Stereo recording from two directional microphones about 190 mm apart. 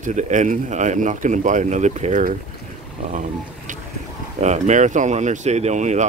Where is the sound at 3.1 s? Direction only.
40° right (ahead or behind).